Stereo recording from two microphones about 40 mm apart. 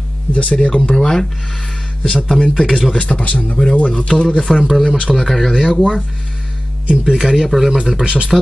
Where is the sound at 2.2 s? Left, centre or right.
Centre.